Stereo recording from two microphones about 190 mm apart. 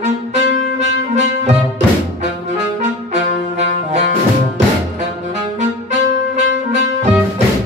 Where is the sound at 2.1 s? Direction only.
35° right (ahead or behind).